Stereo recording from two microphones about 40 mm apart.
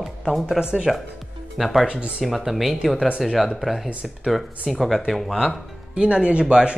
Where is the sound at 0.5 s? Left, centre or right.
Centre.